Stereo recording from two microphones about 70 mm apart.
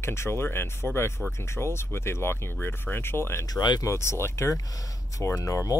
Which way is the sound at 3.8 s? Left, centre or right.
Left.